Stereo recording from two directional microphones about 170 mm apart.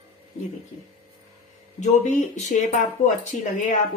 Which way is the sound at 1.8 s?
45° left (ahead or behind).